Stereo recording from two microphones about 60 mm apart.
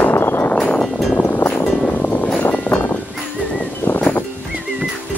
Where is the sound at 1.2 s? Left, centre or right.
Left.